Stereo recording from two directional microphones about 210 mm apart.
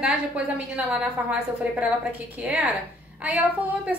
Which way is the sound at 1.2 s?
5° right (ahead or behind).